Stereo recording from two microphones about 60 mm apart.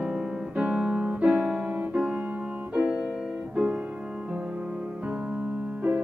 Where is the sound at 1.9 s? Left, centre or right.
Centre.